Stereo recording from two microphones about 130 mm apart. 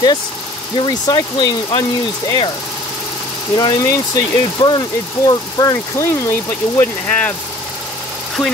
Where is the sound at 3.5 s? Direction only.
30° left (ahead or behind).